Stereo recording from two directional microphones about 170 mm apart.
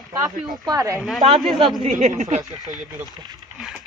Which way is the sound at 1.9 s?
45° right (ahead or behind).